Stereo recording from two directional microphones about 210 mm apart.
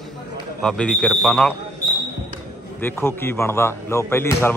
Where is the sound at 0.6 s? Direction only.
5° left (ahead or behind).